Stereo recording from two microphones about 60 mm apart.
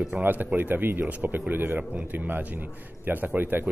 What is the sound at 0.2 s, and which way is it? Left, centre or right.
A man's voice, right.